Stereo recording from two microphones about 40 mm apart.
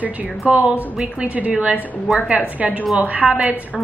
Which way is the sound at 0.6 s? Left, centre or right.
Right.